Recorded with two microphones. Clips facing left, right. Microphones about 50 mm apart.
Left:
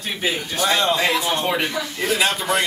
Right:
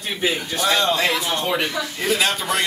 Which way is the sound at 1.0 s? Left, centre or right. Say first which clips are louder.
Left 1 dB; centre.